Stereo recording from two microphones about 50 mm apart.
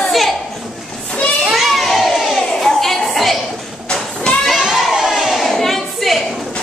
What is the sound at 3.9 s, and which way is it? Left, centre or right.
Goat, centre.